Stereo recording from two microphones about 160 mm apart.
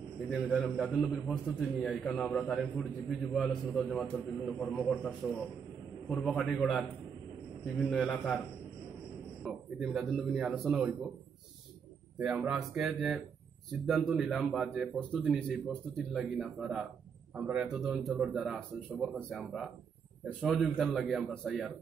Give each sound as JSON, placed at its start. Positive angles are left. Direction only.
{"t": 0.3, "sound": "a man's voice", "side_deg": 0}
{"t": 6.2, "sound": "a man's voice", "side_deg": 0}
{"t": 7.9, "sound": "a man's voice", "side_deg": 5}
{"t": 9.5, "sound": "a man's voice", "side_deg": 0}
{"t": 12.2, "sound": "a man's voice", "side_deg": -5}